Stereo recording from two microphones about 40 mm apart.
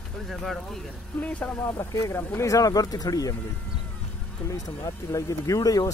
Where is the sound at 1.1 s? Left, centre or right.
Left.